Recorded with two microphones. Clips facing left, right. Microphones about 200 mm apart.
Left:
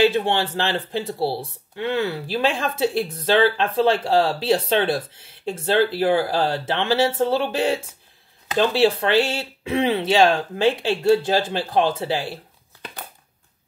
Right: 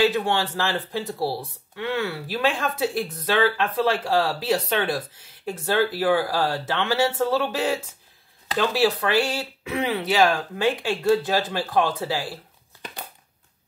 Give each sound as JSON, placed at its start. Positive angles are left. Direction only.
{"t": 0.0, "sound": "speech", "side_deg": 25}